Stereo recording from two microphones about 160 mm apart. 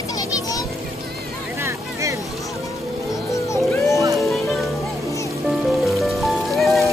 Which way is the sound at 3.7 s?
15° left (ahead or behind).